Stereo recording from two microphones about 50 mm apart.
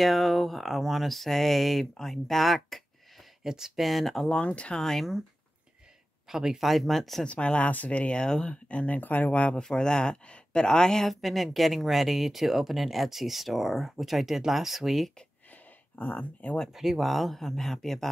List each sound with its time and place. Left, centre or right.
0.0 s speech: centre
3.4 s speech: centre
3.8 s speech: centre
4.3 s speech: left
4.8 s speech: centre
6.2 s speech: centre
7.2 s speech: left
8.6 s speech: left
9.6 s speech: centre
11.1 s speech: centre
15.5 s a sound: left
16.7 s speech: centre